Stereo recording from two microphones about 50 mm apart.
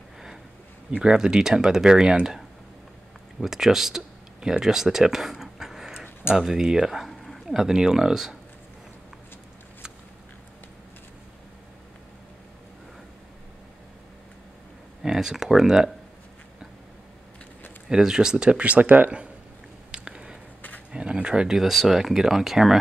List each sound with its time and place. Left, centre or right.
0.9 s speech: centre
15.0 s speech: centre
17.8 s speech: centre; by 19.2 s right
19.9 s a sound: centre
20.9 s speech: centre
21.5 s speech: centre